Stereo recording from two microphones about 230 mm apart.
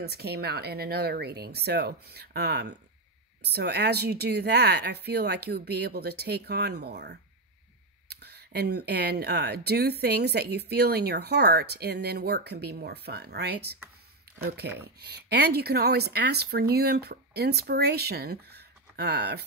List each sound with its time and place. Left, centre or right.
0.0 s speech: right